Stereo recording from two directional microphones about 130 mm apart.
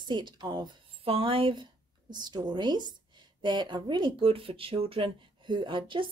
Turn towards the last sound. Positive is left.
turn(degrees=-40)  # may be behind; listen again after turning